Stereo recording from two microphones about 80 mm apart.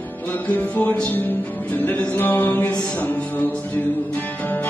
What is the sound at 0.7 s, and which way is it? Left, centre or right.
Music, left.